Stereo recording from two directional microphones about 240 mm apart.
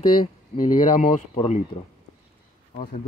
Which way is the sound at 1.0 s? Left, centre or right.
Left.